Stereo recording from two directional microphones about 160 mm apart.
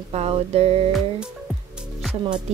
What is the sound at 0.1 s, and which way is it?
Speech, 40° right (ahead or behind).